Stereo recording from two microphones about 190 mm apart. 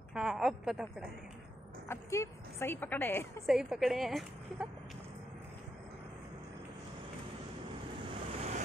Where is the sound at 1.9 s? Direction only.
15° left (ahead or behind).